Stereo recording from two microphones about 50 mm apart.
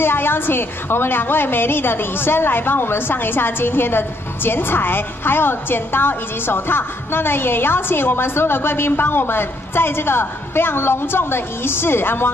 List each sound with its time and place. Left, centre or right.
0.0 s a woman's voice: left